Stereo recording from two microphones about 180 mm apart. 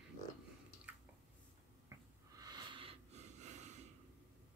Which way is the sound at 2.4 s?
25° right (ahead or behind).